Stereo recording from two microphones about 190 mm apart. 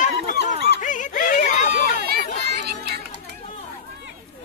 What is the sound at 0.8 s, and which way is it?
Chatter, 40° left (ahead or behind).